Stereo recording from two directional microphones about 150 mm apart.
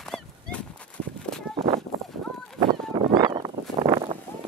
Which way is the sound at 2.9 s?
30° right (ahead or behind).